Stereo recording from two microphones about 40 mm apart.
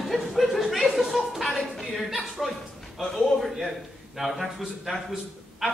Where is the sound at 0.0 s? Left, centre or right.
Centre.